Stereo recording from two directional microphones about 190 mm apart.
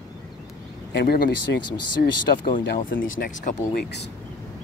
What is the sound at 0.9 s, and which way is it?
Speech, 55° left (ahead or behind).